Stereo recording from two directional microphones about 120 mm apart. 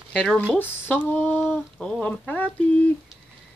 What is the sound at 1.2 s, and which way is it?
Speech, 10° left (ahead or behind).